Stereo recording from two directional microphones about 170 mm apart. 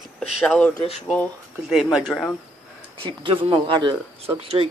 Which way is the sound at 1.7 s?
Centre (ahead or behind).